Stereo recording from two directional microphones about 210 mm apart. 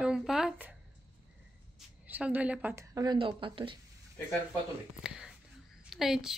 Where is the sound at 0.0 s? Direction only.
5° right (ahead or behind).